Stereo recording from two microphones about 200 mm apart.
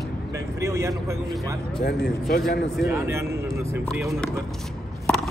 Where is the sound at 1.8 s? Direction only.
55° left (ahead or behind).